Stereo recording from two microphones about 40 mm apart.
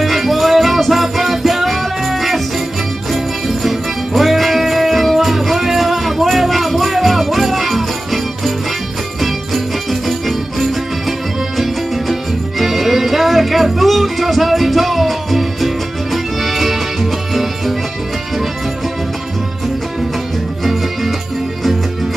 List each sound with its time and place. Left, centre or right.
0.0 s music: centre